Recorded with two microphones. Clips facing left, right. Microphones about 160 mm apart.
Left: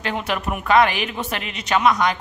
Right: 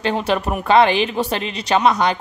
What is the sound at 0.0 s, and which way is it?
Speech, 30° right (ahead or behind).